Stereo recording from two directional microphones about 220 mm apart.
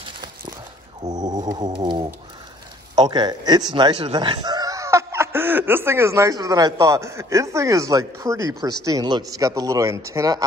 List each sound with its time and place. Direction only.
0.0 s walk: 20° right (ahead or behind)
1.0 s a sound: 15° right (ahead or behind)
3.7 s speech: 20° right (ahead or behind)